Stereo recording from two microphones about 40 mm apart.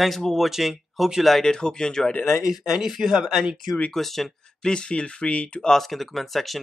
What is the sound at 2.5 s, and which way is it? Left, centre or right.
Speech, centre.